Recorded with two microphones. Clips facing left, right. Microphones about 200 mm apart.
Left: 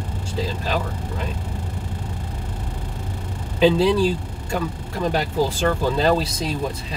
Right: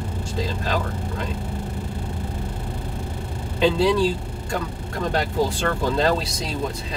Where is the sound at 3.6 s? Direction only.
5° left (ahead or behind).